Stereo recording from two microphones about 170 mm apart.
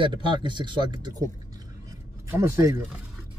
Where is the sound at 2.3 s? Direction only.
15° right (ahead or behind).